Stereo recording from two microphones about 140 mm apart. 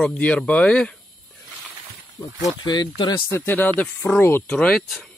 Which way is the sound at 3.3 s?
15° left (ahead or behind).